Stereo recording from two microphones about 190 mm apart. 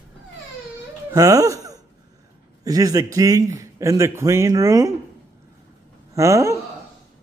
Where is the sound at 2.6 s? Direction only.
20° right (ahead or behind).